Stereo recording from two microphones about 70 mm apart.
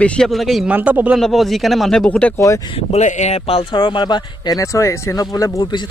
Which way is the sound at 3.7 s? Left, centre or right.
Left.